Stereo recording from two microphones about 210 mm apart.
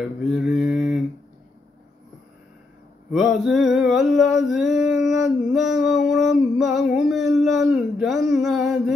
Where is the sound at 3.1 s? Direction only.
Centre (ahead or behind).